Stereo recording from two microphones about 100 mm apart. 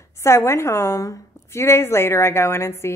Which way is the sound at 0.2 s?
25° left (ahead or behind).